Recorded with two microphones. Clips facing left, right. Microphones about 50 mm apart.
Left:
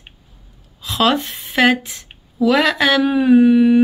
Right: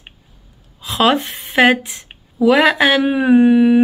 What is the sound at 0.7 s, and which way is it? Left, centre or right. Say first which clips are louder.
A woman's voice: right 2 dB; centre.